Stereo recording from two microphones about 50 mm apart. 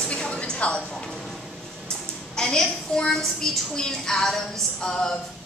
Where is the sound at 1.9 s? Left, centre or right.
Centre.